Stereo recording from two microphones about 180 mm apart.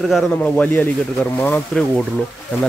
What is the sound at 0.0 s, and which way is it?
Speech, 5° left (ahead or behind).